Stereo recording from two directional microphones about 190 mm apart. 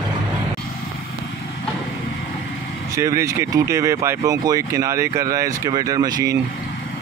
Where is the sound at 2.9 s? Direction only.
15° right (ahead or behind).